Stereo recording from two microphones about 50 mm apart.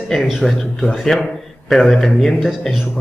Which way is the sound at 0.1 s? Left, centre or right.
Centre.